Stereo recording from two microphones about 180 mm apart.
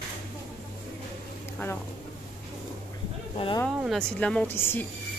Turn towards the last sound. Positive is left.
turn(degrees=10)  # may be behind; listen again after turning